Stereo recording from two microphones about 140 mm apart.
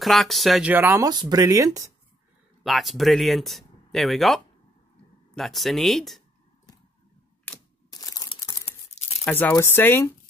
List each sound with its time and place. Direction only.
0.0 s speech: centre (ahead or behind)
0.7 s speech: 15° right (ahead or behind)
1.0 s speech: 25° right (ahead or behind)
2.6 s speech: centre (ahead or behind)
7.9 s a sound: 25° left (ahead or behind)
8.4 s tearing: 20° left (ahead or behind)
9.3 s speech: 10° left (ahead or behind)